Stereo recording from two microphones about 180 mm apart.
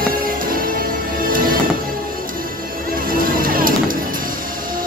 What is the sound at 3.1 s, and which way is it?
Music, 50° right (ahead or behind).